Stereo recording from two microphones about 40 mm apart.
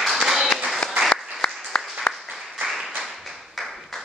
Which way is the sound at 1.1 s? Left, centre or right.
Left.